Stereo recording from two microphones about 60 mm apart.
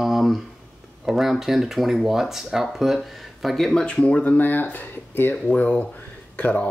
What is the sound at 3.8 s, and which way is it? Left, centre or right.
Speech, centre.